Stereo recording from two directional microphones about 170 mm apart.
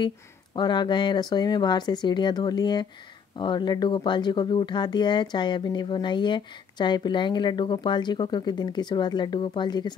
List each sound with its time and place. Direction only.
0.6 s speech: 25° left (ahead or behind)